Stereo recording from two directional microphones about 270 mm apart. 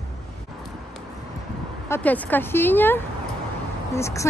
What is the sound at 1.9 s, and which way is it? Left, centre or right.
Speech, centre.